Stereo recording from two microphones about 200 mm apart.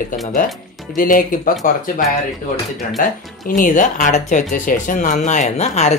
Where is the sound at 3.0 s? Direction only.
45° left (ahead or behind).